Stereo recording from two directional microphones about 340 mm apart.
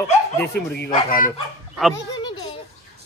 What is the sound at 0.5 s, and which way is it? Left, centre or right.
Speech, left.